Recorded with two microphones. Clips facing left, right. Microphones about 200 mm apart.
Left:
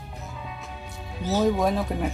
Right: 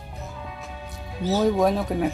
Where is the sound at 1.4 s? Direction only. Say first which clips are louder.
Right 2 dB; centre (ahead or behind).